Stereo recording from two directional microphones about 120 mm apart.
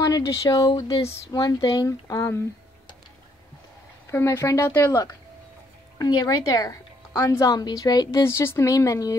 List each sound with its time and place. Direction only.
0.0 s speech: 30° left (ahead or behind)
4.1 s a woman's voice: 20° left (ahead or behind)
5.9 s a woman's voice: 35° left (ahead or behind)